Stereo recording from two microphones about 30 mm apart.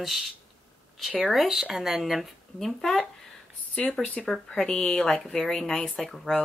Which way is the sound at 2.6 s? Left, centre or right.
Centre.